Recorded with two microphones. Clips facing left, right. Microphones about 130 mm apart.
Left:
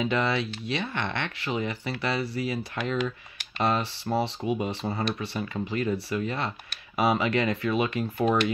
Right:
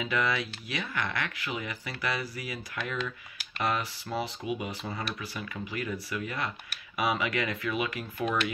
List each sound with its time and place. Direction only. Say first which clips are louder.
0.0 s speech: left 4 dB; 30° left (ahead or behind)